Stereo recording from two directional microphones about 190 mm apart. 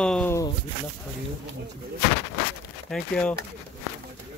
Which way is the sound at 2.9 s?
5° left (ahead or behind).